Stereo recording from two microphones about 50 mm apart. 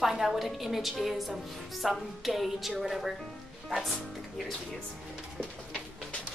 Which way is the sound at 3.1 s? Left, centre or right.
Centre.